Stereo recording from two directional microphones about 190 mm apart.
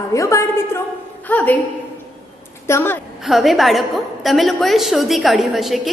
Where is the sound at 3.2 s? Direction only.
Centre (ahead or behind).